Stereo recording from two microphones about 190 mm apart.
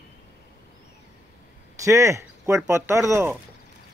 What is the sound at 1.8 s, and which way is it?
Speech, 15° right (ahead or behind).